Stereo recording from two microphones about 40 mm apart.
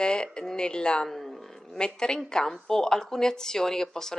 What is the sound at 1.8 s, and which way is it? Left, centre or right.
A woman's voice, centre.